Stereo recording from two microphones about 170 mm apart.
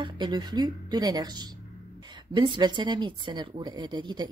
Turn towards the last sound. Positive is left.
turn(degrees=-25)  # may be behind; listen again after turning